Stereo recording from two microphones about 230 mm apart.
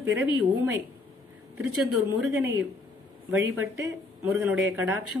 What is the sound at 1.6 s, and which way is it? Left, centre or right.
A woman's voice, centre.